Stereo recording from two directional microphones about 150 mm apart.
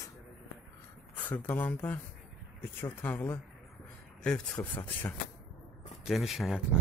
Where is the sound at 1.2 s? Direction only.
10° left (ahead or behind).